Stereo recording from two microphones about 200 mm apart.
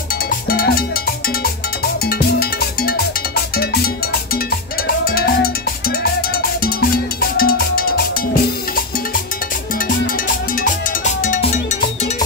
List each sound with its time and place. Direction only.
0.5 s cowbell: 50° left (ahead or behind)